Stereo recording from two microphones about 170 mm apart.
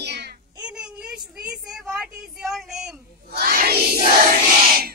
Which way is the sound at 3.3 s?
60° right (ahead or behind).